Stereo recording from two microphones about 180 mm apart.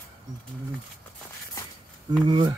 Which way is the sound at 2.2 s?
25° right (ahead or behind).